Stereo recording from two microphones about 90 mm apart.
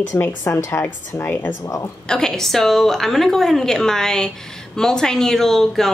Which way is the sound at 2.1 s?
5° left (ahead or behind).